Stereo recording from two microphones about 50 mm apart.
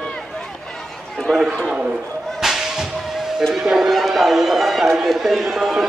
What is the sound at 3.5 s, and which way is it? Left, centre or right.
A man's voice, centre.